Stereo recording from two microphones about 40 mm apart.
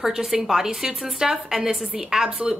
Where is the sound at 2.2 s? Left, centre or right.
Right.